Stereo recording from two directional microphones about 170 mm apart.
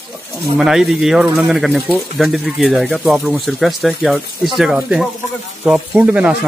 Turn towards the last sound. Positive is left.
turn(degrees=-5)  # may be behind; listen again after turning